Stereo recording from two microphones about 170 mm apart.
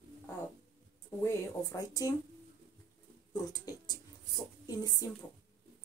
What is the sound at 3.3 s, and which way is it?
Speech, 20° left (ahead or behind).